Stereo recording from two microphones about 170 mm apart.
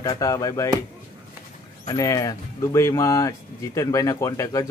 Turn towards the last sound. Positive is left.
turn(degrees=20)  # may be behind; listen again after turning